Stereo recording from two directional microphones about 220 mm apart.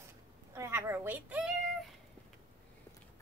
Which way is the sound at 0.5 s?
10° right (ahead or behind).